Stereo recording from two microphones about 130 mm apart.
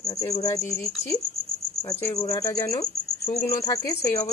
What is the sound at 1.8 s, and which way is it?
Speech, 20° left (ahead or behind).